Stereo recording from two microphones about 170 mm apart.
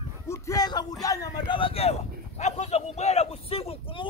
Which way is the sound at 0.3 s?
20° left (ahead or behind).